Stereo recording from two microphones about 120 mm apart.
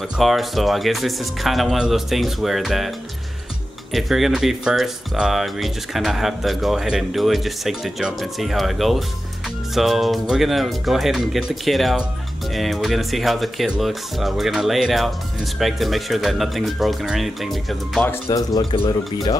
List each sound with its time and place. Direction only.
0.2 s speech: centre (ahead or behind)
3.9 s speech: centre (ahead or behind)
18.3 s speech: 35° left (ahead or behind)